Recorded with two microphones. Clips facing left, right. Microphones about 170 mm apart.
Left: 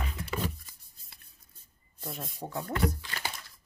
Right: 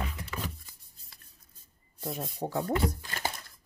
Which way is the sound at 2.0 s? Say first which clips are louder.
Right 5 dB; 30° right (ahead or behind).